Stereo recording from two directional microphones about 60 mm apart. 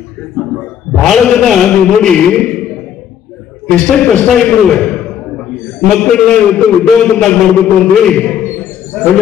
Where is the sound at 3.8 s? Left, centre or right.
Centre.